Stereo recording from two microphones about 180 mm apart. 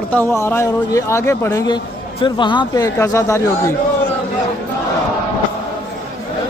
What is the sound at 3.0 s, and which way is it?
Speech, 15° left (ahead or behind).